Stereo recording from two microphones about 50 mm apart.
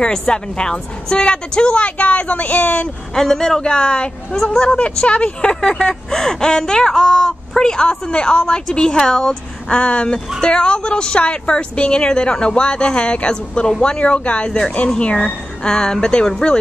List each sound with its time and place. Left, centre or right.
0.0 s speech: centre
3.2 s speech: centre; by 15.3 s left
15.6 s speech: centre